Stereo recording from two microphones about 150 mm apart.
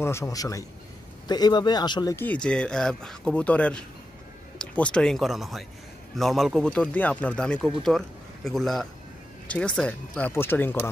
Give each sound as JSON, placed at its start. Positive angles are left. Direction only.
{"t": 0.0, "sound": "speech", "side_deg": 20}
{"t": 2.1, "sound": "speech", "side_deg": 10}